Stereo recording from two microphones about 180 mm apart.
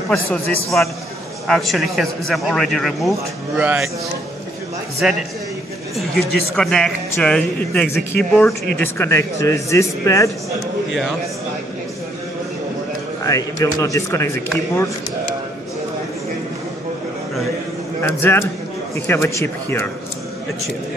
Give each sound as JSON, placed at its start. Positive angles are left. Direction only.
{"t": 1.5, "sound": "a man's voice", "side_deg": 0}
{"t": 5.0, "sound": "a man's voice", "side_deg": -5}
{"t": 6.5, "sound": "a man's voice", "side_deg": 5}
{"t": 13.2, "sound": "speech", "side_deg": 20}
{"t": 18.0, "sound": "speech", "side_deg": 10}